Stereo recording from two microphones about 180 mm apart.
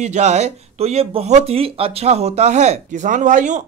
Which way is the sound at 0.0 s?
40° right (ahead or behind).